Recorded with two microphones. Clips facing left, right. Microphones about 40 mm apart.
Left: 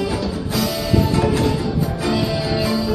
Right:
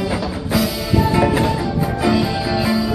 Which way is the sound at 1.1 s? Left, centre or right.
Centre.